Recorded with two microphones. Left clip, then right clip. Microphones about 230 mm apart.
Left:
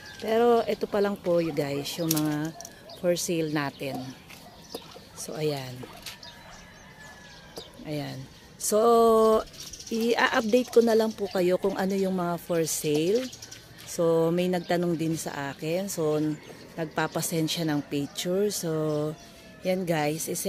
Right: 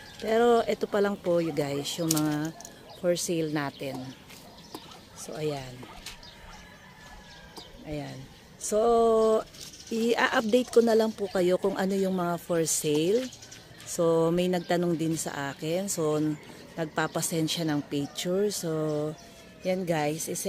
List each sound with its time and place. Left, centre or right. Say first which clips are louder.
0.2 s speech: even; centre
5.2 s speech: left 3 dB; centre
7.8 s speech: left 3 dB; centre
9.8 s speech: left 1 dB; centre